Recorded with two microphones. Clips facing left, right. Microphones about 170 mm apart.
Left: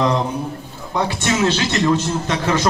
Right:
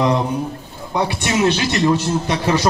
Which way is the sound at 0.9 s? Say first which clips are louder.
Right 1 dB; 15° right (ahead or behind).